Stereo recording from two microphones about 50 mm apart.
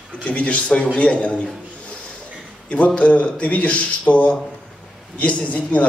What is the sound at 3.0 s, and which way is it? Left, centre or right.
Speech, left.